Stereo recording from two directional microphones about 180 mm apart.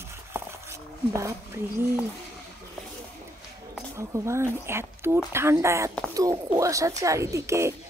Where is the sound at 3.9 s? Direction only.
15° right (ahead or behind).